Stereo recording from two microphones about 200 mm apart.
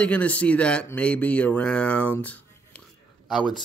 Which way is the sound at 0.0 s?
5° left (ahead or behind).